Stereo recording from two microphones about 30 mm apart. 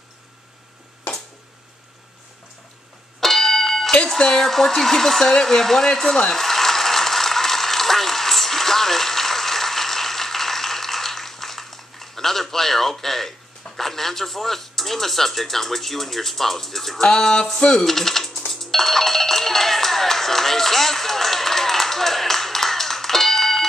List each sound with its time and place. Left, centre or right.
3.2 s music: centre
4.4 s speech: centre
6.3 s a sound: centre
13.7 s speech: centre
18.5 s ringtone: centre